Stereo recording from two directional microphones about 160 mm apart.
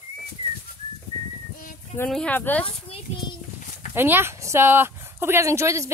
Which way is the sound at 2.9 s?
35° left (ahead or behind).